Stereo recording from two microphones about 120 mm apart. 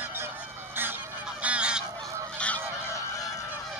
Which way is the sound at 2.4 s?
10° left (ahead or behind).